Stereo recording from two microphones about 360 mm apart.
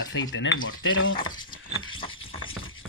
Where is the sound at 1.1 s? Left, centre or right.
Centre.